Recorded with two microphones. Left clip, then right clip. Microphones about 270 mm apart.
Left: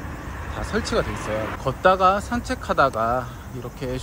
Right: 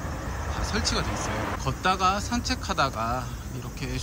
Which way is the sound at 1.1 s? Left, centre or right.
Right.